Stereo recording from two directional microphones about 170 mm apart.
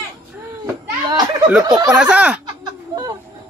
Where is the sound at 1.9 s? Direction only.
5° right (ahead or behind).